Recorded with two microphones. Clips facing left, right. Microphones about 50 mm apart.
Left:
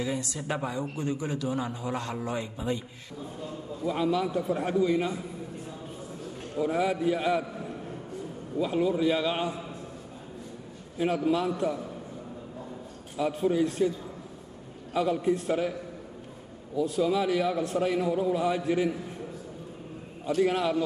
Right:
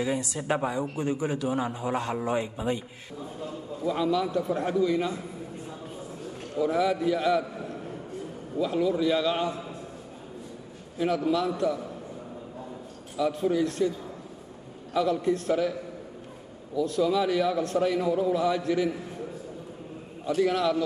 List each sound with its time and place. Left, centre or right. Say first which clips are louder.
0.0 s a man's voice: right 3 dB; centre
3.8 s a man's voice: right 1 dB; centre
6.6 s a man's voice: right 2 dB; centre
8.5 s a man's voice: right 1 dB; centre
11.0 s a man's voice: right 1 dB; centre
13.2 s a man's voice: right 1 dB; centre
15.0 s a man's voice: right 1 dB; centre
16.7 s a man's voice: right 1 dB; centre
18.3 s a man's voice: right 1 dB; centre
20.3 s a man's voice: right 1 dB; centre